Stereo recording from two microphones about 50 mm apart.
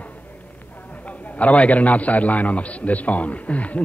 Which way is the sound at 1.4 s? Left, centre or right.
Left.